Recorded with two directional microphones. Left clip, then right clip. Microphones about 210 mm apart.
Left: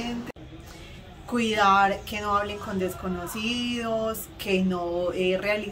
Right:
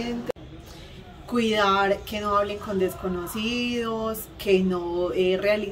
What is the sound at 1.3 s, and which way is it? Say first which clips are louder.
Speech: left 1 dB; 5° left (ahead or behind).